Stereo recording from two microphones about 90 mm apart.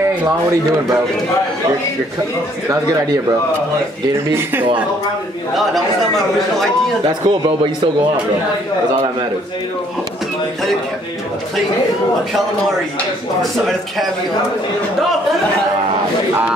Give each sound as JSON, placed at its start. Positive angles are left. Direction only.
{"t": 4.3, "sound": "speech", "side_deg": -30}
{"t": 7.2, "sound": "speech", "side_deg": -60}
{"t": 13.4, "sound": "speech", "side_deg": 0}